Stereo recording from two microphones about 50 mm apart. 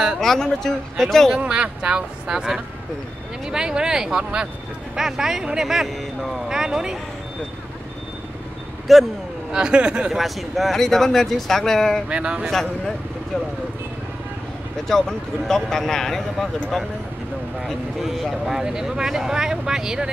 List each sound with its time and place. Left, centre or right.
0.2 s speech: centre
1.3 s speech: centre
6.5 s speech: centre
8.9 s speech: centre
9.5 s speech: centre
10.1 s speech: centre
12.1 s speech: right
12.4 s speech: centre
14.9 s speech: centre
17.6 s speech: centre